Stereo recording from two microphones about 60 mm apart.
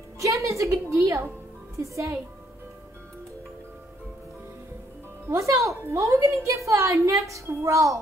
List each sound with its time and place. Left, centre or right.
0.2 s a sound: right
1.8 s a woman's voice: right
5.3 s a woman's voice: right